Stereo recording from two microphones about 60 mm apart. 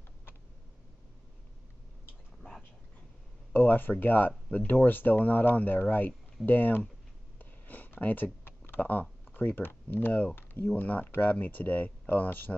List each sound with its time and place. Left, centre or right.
3.5 s speech: left
7.3 s a sound: left
9.3 s speech: left
10.8 s speech: left